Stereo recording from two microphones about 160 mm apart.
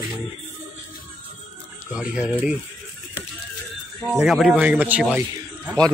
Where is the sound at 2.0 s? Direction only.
5° right (ahead or behind).